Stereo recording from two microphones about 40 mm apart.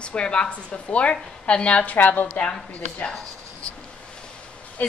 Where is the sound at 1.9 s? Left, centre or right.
Left.